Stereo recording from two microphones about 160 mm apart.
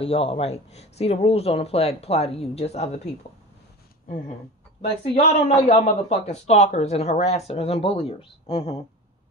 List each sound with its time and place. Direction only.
0.0 s speech: 35° left (ahead or behind)
4.8 s speech: 35° left (ahead or behind)